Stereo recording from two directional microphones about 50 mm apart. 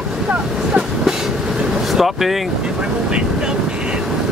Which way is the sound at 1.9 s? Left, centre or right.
Centre.